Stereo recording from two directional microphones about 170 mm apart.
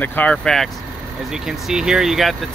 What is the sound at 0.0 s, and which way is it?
Speech, 10° left (ahead or behind).